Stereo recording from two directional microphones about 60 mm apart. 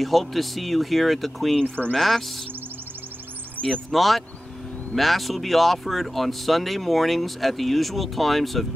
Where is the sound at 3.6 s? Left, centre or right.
Left.